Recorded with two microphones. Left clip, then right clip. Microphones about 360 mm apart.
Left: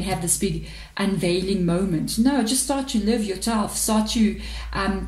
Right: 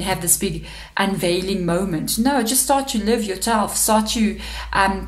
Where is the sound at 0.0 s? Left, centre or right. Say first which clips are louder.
Right 3 dB; right.